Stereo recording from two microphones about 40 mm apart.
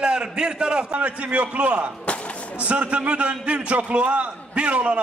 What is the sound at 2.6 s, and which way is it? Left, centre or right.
A man's voice, right.